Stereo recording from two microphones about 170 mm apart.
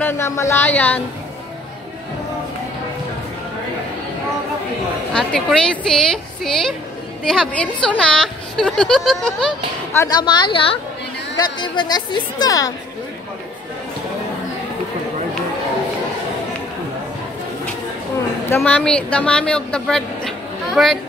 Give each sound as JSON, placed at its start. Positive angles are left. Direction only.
{"t": 0.0, "sound": "speech", "side_deg": 15}
{"t": 5.1, "sound": "speech", "side_deg": 5}
{"t": 9.9, "sound": "a woman's voice", "side_deg": 25}
{"t": 18.6, "sound": "speech", "side_deg": 5}